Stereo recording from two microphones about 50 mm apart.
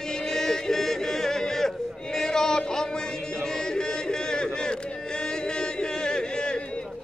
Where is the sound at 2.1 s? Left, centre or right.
Centre.